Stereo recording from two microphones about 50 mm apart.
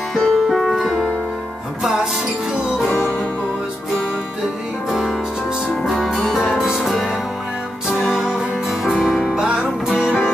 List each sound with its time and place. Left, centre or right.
0.1 s music: centre
5.7 s music: centre
8.1 s music: centre